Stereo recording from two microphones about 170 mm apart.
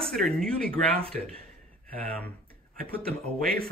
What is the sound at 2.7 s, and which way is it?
Speech, 60° right (ahead or behind).